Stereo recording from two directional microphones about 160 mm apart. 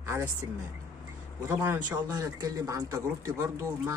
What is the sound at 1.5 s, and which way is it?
Speech, 15° right (ahead or behind).